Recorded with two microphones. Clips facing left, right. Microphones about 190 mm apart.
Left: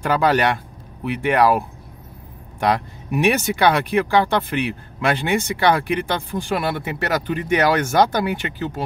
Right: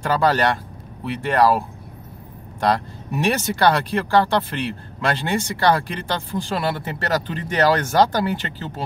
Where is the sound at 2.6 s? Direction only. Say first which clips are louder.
Even; 15° left (ahead or behind).